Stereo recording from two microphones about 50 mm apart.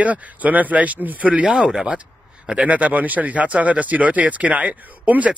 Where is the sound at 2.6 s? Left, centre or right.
Right.